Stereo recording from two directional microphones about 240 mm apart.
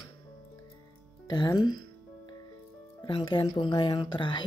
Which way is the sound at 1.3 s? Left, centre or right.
Centre.